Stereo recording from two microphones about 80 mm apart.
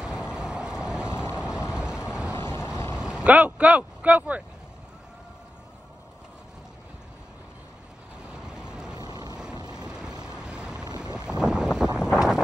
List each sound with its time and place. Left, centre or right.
0.0 s vehicle: centre
1.0 s vehicle: left
1.3 s vehicle: centre
2.3 s vehicle: left
3.0 s speech: centre
8.2 s vehicle: centre
8.9 s vehicle: right
9.8 s vehicle: centre
11.1 s wind noise: centre